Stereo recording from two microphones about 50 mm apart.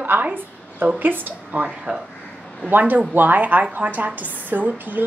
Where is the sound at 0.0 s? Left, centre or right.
Right.